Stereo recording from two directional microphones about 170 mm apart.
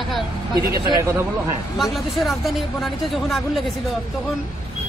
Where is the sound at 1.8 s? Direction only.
Centre (ahead or behind).